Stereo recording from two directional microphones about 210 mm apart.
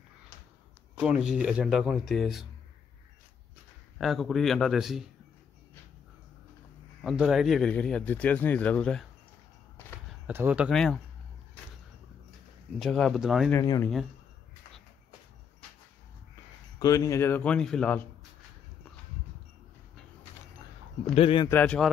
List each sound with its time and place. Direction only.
0.9 s speech: 5° right (ahead or behind)
4.0 s speech: centre (ahead or behind)
7.0 s speech: centre (ahead or behind)
10.2 s speech: 10° right (ahead or behind)
12.7 s speech: centre (ahead or behind)
13.5 s speech: 15° left (ahead or behind)
16.8 s speech: 15° left (ahead or behind)
21.1 s speech: 25° left (ahead or behind)
21.5 s speech: 10° left (ahead or behind)